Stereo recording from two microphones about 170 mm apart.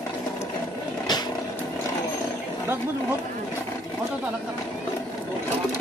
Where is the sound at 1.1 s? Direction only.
25° left (ahead or behind).